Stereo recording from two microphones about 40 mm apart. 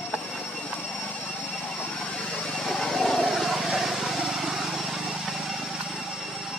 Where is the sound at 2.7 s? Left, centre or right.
Centre.